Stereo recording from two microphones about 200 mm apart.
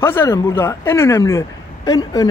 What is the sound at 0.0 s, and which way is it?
A man's voice, 10° left (ahead or behind).